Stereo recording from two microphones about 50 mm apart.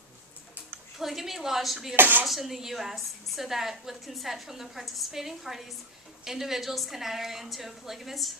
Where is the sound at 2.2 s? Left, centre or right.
Centre.